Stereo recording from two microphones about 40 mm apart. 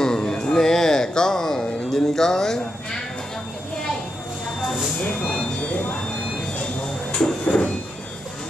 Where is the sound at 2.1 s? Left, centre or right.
Centre.